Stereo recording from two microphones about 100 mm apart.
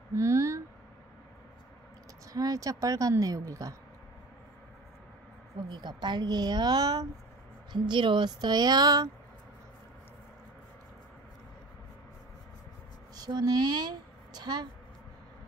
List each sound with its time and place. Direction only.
0.1 s speech: 30° right (ahead or behind)
2.3 s a woman's voice: 40° right (ahead or behind)
5.7 s a woman's voice: 45° right (ahead or behind)
7.7 s a woman's voice: 50° right (ahead or behind)
13.1 s speech: 40° right (ahead or behind)